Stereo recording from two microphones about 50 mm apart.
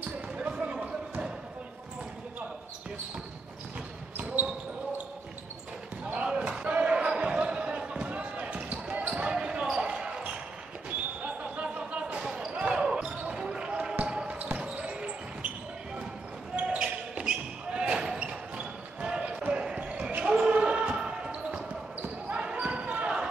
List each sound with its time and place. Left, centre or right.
0.5 s a sound: centre
4.2 s basketball bounce: right
6.1 s basketball bounce: centre
11.2 s basketball bounce: right
16.5 s basketball bounce: centre